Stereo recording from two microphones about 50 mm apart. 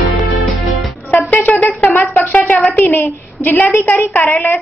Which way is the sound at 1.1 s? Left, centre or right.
Left.